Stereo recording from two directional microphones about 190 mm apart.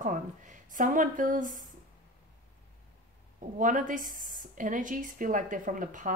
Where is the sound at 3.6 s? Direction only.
45° right (ahead or behind).